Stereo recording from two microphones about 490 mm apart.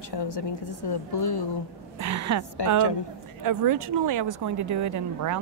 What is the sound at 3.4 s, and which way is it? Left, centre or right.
Speech, right.